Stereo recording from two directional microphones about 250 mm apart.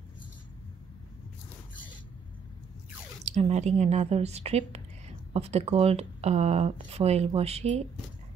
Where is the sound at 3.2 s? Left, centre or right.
Right.